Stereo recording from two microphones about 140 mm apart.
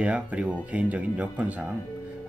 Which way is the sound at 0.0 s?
10° right (ahead or behind).